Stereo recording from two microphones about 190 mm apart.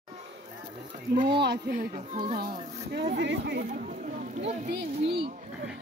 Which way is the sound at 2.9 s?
65° right (ahead or behind).